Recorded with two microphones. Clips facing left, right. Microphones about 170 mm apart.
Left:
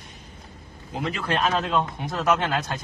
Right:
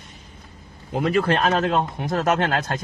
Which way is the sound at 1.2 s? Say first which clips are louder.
Right 1 dB; 60° right (ahead or behind).